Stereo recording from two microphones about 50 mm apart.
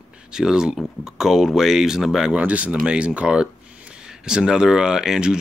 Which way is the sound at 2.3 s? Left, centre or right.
Right.